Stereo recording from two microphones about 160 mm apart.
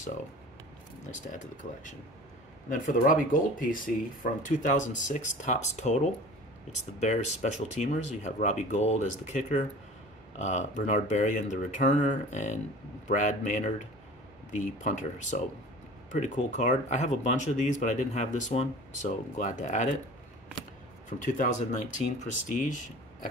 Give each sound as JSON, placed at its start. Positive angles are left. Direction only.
{"t": 1.3, "sound": "speech", "side_deg": 50}
{"t": 7.7, "sound": "speech", "side_deg": 50}
{"t": 21.3, "sound": "speech", "side_deg": 50}